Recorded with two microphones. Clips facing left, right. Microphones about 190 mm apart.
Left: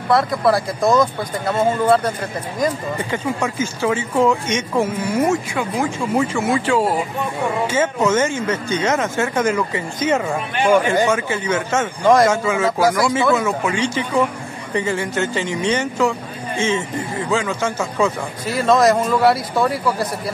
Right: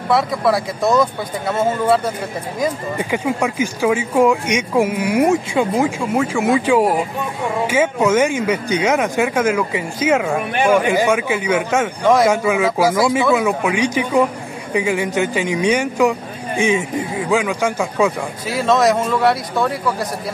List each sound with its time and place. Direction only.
0.1 s speech: centre (ahead or behind)
2.6 s speech: 15° right (ahead or behind)
5.9 s speech: 5° right (ahead or behind)
11.1 s speech: 10° right (ahead or behind)
12.0 s speech: centre (ahead or behind)
12.3 s speech: 15° right (ahead or behind)
12.6 s speech: centre (ahead or behind)
12.9 s speech: 20° right (ahead or behind)
13.2 s speech: 10° right (ahead or behind)